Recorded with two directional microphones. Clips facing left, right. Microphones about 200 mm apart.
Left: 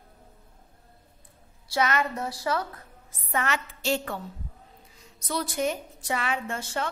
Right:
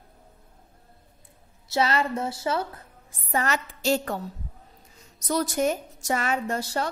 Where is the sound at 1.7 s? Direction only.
30° right (ahead or behind).